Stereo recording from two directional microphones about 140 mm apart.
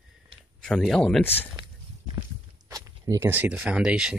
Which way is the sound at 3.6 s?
5° right (ahead or behind).